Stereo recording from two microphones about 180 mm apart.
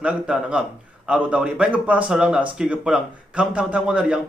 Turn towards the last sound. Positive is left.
turn(degrees=-5)  # may be behind; listen again after turning